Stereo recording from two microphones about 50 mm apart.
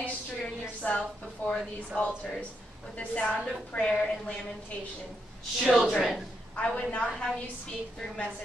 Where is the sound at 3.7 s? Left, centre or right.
Left.